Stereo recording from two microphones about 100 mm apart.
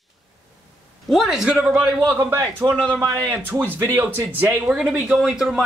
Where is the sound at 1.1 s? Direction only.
5° right (ahead or behind).